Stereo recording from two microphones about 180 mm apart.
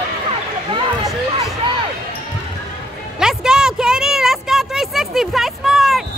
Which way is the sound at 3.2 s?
5° right (ahead or behind).